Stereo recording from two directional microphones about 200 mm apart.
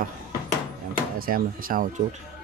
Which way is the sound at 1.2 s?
45° right (ahead or behind).